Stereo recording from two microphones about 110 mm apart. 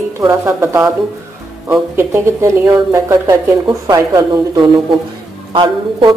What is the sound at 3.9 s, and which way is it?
Speech, 40° right (ahead or behind).